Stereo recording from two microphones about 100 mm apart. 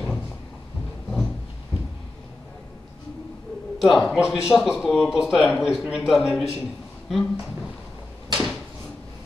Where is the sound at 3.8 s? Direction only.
Centre (ahead or behind).